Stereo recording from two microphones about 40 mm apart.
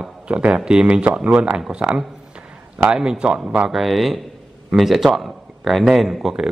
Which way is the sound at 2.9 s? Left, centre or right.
Right.